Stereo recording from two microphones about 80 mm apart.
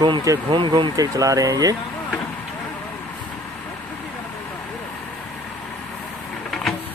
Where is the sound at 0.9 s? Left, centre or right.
Right.